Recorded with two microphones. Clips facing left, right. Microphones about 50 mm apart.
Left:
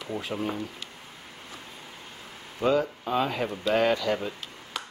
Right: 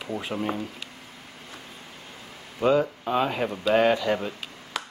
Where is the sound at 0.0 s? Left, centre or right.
Centre.